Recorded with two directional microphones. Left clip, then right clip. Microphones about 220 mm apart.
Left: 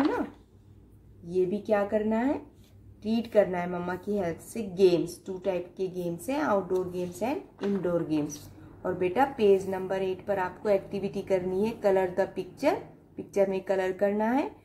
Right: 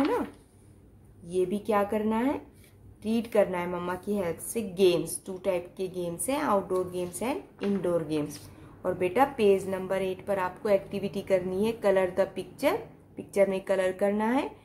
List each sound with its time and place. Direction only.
1.3 s a woman's voice: 20° right (ahead or behind)